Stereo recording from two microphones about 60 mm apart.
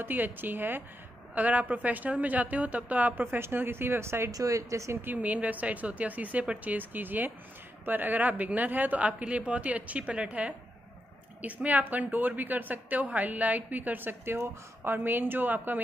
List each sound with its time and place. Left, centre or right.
0.0 s a woman's voice: right
4.3 s speech: right
5.0 s a woman's voice: right
11.4 s a woman's voice: right